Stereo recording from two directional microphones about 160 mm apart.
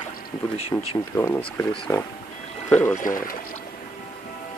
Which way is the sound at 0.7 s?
10° left (ahead or behind).